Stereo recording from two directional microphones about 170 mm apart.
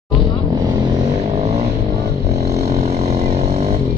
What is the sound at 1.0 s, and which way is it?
Vehicle, 40° right (ahead or behind).